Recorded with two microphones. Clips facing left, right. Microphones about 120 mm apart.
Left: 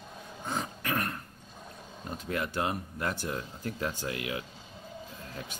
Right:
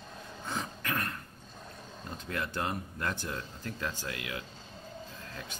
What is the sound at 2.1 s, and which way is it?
Speech, 20° left (ahead or behind).